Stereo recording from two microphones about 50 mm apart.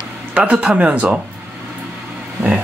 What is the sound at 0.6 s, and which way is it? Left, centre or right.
Speech, right.